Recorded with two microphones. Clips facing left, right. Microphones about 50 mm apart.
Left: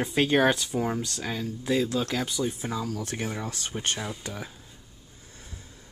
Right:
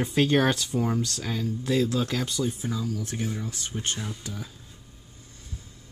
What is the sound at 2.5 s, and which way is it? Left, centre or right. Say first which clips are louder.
Speech: even; left.